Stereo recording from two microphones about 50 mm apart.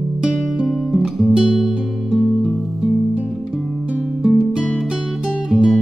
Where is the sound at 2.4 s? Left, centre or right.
Centre.